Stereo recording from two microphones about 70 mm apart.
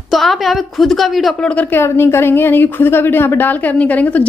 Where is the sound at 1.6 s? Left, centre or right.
Left.